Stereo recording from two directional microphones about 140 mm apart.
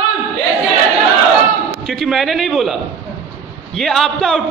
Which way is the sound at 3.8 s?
5° left (ahead or behind).